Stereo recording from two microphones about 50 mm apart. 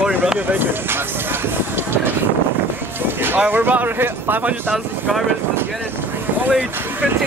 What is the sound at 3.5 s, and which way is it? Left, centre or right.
Speech, right.